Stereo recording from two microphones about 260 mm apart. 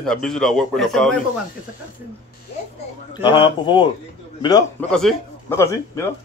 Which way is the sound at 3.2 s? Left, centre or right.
Centre.